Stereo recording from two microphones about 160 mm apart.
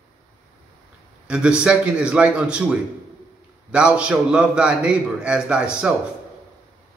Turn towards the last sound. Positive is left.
turn(degrees=-5)  # may be behind; listen again after turning